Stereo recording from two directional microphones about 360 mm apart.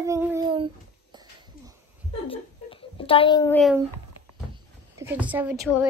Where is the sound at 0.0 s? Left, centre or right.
Centre.